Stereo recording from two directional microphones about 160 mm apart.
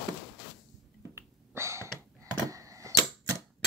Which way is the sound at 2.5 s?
20° right (ahead or behind).